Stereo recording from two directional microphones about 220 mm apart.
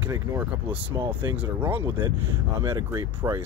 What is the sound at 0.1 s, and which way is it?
Speech, 15° right (ahead or behind).